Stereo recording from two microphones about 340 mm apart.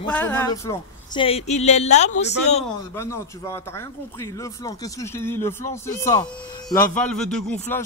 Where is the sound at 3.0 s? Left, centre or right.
Centre.